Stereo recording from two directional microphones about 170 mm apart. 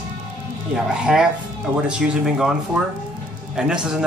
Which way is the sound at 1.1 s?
5° right (ahead or behind).